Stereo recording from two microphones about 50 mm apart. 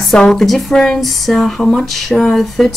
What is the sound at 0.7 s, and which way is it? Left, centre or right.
Speech, centre.